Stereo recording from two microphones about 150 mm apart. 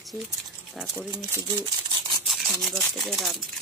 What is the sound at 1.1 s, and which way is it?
Speech, 25° right (ahead or behind).